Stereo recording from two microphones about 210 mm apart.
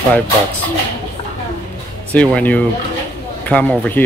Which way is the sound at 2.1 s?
5° left (ahead or behind).